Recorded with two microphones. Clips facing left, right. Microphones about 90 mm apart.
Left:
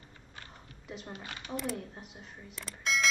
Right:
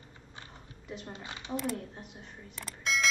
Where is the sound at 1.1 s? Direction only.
20° right (ahead or behind).